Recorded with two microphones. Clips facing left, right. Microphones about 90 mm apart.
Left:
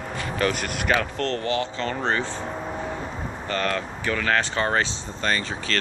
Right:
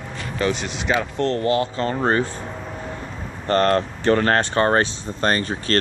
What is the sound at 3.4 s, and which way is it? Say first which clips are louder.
Speech: right 9 dB; 55° right (ahead or behind).